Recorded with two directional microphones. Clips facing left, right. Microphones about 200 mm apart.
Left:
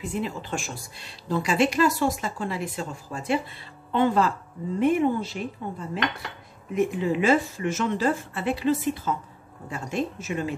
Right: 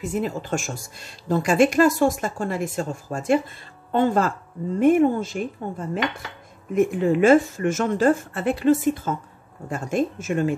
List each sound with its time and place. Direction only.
0.0 s speech: 45° right (ahead or behind)